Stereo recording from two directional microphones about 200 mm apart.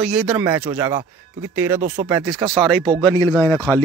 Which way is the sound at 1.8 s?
35° right (ahead or behind).